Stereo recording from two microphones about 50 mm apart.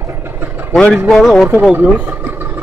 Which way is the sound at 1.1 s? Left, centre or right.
Centre.